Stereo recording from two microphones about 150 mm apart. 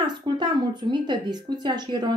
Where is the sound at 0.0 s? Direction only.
30° right (ahead or behind).